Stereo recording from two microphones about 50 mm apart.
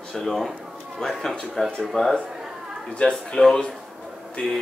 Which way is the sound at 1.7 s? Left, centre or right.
Centre.